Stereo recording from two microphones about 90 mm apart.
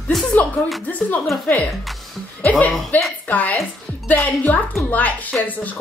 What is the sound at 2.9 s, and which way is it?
A woman's voice, 20° left (ahead or behind).